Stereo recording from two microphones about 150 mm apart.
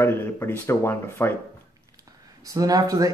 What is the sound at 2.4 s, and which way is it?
Speech, 25° right (ahead or behind).